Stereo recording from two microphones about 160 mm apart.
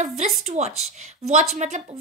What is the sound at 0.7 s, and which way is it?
Speech, centre (ahead or behind).